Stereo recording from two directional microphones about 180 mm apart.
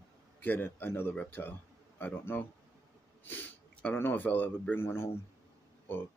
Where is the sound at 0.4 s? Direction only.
10° left (ahead or behind).